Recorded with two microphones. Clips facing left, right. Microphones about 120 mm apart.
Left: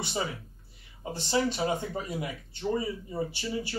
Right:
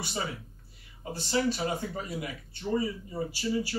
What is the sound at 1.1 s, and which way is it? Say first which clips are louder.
Speech: even; 25° left (ahead or behind).